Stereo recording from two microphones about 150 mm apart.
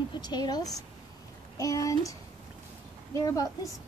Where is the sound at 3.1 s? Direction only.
20° left (ahead or behind).